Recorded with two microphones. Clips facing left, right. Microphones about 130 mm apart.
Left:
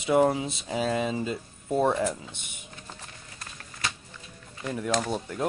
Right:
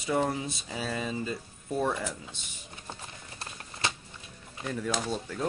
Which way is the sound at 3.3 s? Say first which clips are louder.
Right 2 dB; 25° right (ahead or behind).